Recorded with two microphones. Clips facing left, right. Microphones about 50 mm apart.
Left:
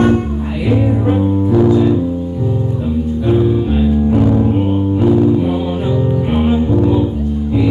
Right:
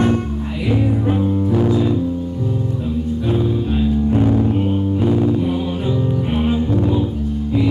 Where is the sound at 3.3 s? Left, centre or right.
Centre.